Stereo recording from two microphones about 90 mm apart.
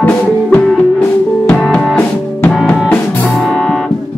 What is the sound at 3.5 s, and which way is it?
Music, 5° left (ahead or behind).